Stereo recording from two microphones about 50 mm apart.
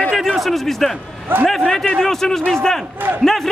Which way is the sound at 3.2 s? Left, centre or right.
Centre.